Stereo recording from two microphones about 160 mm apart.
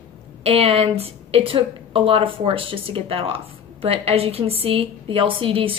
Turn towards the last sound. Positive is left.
turn(degrees=-35)  # may be behind; listen again after turning